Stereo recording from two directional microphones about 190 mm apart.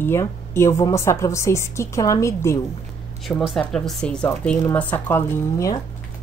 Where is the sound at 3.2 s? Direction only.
Centre (ahead or behind).